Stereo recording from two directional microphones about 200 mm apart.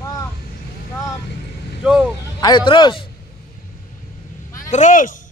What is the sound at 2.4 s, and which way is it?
Speech, 25° left (ahead or behind).